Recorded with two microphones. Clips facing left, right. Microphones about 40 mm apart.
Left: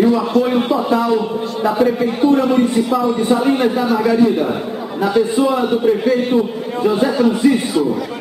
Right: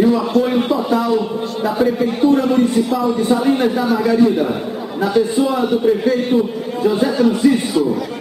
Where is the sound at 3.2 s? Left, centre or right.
Left.